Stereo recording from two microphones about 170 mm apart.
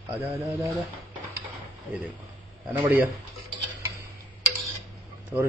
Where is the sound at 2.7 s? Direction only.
10° right (ahead or behind).